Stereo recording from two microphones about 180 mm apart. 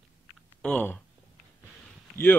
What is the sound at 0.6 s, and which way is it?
Speech, 5° left (ahead or behind).